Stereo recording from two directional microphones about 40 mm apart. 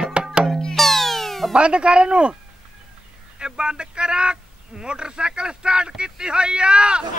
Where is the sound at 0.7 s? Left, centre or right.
Centre.